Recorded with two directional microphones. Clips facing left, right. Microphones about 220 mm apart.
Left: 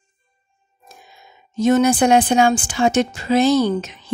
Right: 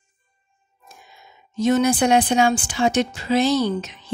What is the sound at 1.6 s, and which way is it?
Speech, 50° left (ahead or behind).